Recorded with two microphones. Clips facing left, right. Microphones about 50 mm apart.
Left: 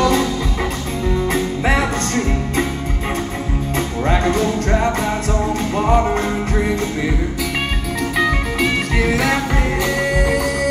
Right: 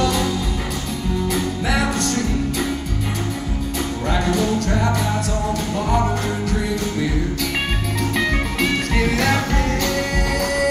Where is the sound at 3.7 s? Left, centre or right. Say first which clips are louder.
Left 4 dB; left.